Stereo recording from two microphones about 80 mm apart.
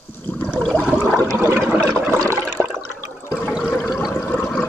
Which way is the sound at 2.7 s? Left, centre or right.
Right.